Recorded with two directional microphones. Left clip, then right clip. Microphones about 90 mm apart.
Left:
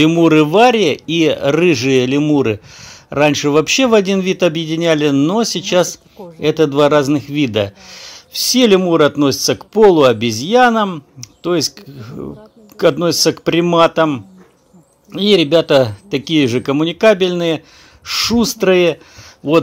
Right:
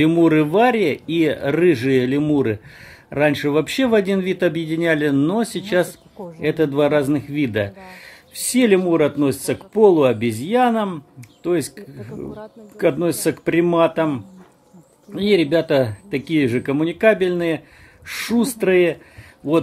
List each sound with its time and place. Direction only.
0.0 s a man's voice: 20° left (ahead or behind)
15.1 s a man's voice: 30° left (ahead or behind)